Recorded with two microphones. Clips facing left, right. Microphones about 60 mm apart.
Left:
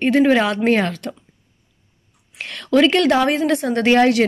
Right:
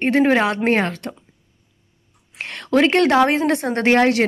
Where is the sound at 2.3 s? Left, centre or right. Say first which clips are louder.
Left 1 dB; right.